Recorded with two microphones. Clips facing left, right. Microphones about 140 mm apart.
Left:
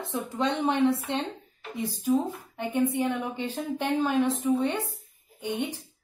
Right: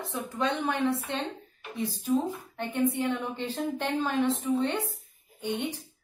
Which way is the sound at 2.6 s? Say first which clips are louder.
Left 2 dB; 10° left (ahead or behind).